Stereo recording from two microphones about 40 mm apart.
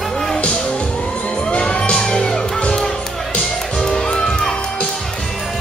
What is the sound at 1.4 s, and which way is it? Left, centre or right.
Music, left.